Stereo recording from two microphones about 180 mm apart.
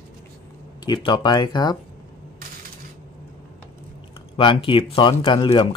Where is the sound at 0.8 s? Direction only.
25° left (ahead or behind).